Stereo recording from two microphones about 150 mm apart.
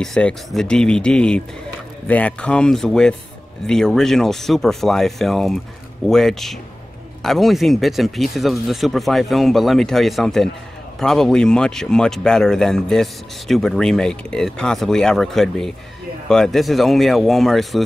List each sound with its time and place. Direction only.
0.0 s speech: 5° left (ahead or behind)